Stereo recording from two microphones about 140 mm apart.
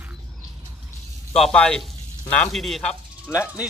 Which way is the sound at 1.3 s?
5° left (ahead or behind).